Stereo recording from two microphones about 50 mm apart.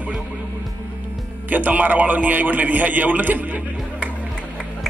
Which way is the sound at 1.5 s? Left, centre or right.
Right.